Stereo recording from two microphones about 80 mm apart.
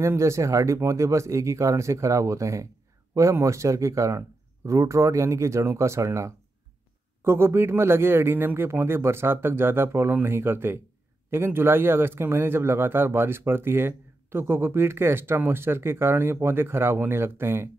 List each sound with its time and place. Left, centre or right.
0.0 s speech: right